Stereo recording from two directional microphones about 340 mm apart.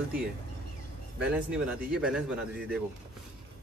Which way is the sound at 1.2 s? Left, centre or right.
Centre.